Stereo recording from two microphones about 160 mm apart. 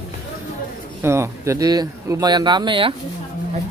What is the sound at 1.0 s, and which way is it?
Speech, 15° right (ahead or behind).